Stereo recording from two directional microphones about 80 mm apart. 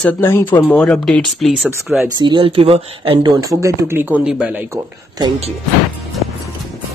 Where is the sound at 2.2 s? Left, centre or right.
Right.